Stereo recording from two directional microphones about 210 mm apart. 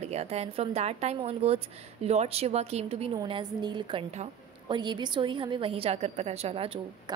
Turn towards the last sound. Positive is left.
turn(degrees=-25)  # may be behind; listen again after turning